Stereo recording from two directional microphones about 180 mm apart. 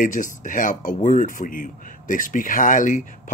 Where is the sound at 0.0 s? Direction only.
45° left (ahead or behind).